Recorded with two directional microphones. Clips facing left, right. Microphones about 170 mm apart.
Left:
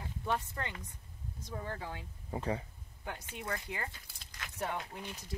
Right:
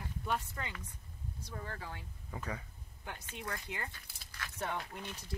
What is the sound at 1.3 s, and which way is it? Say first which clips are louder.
Speech: left 4 dB; 20° left (ahead or behind).